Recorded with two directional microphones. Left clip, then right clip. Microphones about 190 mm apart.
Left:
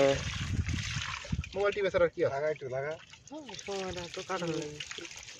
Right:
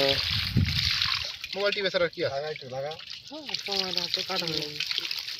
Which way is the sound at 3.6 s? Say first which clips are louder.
Right 8 dB; 30° right (ahead or behind).